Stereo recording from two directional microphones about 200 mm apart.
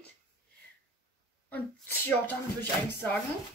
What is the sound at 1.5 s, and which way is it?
Speech, 10° left (ahead or behind).